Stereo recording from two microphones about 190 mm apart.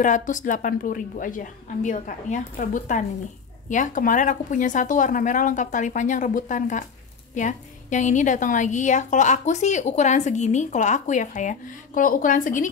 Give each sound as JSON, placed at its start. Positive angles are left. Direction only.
{"t": 0.0, "sound": "a woman's voice", "side_deg": 45}